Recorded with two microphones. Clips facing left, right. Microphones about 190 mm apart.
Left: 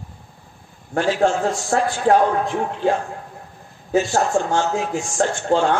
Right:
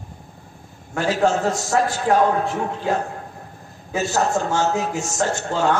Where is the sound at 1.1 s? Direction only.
40° right (ahead or behind).